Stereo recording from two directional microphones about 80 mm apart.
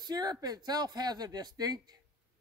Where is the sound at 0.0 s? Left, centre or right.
Right.